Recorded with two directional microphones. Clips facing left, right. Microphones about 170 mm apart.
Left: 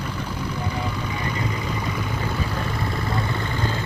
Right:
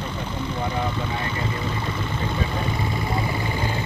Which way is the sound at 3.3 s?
15° right (ahead or behind).